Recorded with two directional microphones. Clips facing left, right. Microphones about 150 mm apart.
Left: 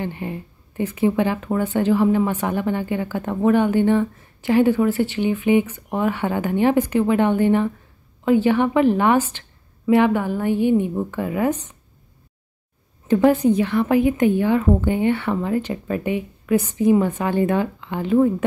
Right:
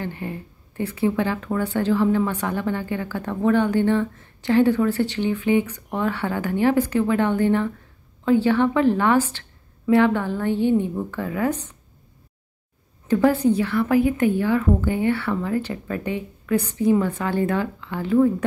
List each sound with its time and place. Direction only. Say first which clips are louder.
0.0 s speech: left 2 dB; 20° left (ahead or behind)
13.1 s speech: left 2 dB; 15° left (ahead or behind)